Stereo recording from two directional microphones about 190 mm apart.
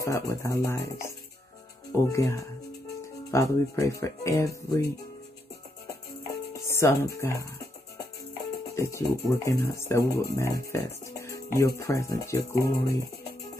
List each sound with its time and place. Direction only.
0.0 s speech: 15° left (ahead or behind)
6.5 s speech: 15° left (ahead or behind)
8.7 s speech: 15° left (ahead or behind)